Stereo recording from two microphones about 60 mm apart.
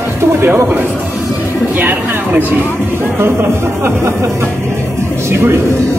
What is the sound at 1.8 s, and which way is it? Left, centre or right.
Speech, right.